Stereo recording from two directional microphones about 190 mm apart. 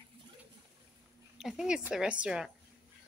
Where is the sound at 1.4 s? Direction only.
Centre (ahead or behind).